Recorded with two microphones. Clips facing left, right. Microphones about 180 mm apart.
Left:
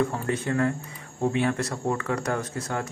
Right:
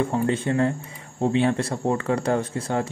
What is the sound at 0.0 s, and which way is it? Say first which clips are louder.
Speech: right 3 dB; 25° right (ahead or behind).